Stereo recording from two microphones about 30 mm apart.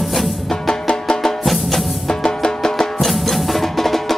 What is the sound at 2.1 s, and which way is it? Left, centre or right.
Music, left.